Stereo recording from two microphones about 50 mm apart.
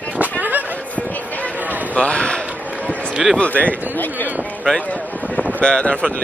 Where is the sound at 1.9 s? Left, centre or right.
Left.